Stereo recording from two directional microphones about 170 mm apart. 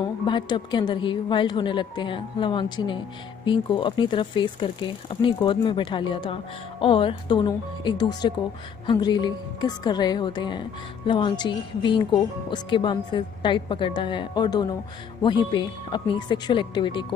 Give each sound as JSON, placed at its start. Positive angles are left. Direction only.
{"t": 0.2, "sound": "speech", "side_deg": 25}